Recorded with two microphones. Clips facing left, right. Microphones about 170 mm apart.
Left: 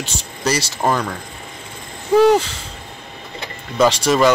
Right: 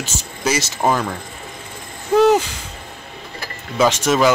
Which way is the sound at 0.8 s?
5° right (ahead or behind).